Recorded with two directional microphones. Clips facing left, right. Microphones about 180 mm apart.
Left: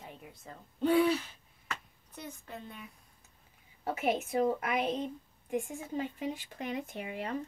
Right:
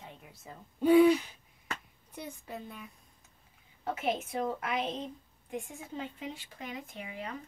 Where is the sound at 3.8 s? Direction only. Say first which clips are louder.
Left 1 dB; 10° left (ahead or behind).